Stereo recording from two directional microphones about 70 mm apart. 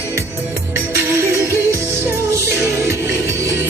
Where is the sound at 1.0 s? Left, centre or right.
Right.